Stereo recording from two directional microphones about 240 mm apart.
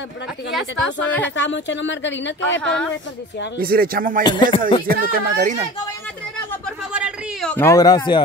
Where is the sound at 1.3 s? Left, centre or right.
Left.